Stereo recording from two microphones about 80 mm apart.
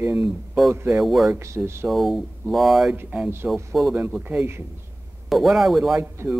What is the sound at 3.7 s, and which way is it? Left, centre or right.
Speech, centre.